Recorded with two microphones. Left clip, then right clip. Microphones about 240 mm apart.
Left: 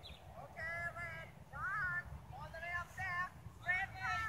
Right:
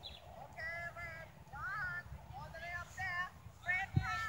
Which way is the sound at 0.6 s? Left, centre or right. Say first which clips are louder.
Left 1 dB; left.